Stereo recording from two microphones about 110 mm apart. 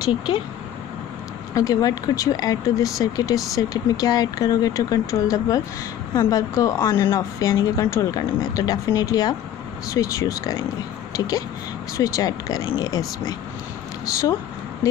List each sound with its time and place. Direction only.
1.5 s speech: 35° left (ahead or behind)